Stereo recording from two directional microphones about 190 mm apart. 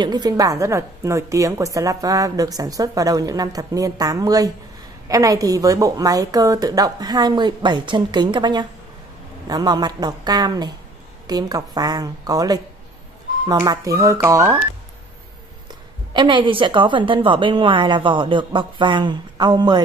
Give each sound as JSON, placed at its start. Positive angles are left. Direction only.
{"t": 0.0, "sound": "a woman's voice", "side_deg": -20}
{"t": 15.7, "sound": "a woman's voice", "side_deg": -25}